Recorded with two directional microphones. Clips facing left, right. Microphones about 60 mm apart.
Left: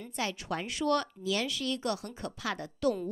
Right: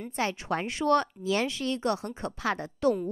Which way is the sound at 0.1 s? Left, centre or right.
Right.